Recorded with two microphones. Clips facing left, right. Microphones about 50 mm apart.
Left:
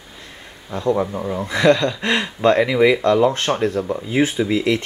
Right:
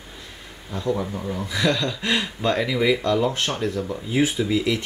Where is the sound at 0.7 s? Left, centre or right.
Left.